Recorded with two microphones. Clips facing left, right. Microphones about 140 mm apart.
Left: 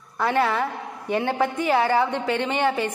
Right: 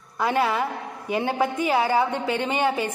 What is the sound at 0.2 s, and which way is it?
A woman's voice, 15° right (ahead or behind).